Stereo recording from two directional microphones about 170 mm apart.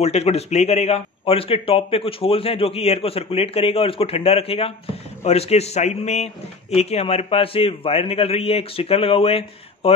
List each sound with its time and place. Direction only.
0.0 s a man's voice: 40° left (ahead or behind)